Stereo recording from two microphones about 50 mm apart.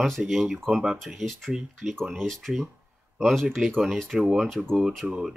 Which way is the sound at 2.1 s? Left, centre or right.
Centre.